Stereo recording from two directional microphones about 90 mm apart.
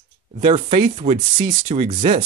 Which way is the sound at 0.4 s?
90° right.